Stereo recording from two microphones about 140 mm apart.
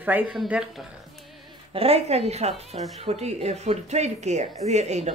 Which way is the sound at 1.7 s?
45° right (ahead or behind).